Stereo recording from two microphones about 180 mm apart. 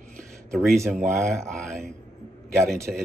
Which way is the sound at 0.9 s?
15° right (ahead or behind).